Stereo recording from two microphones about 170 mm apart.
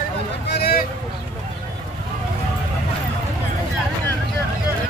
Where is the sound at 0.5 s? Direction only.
70° left (ahead or behind).